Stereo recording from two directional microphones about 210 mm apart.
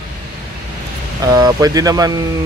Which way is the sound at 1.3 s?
15° right (ahead or behind).